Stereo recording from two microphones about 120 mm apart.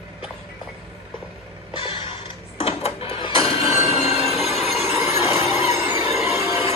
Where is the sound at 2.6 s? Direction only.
60° left (ahead or behind).